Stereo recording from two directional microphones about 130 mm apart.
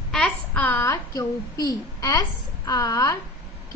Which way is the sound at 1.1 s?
30° left (ahead or behind).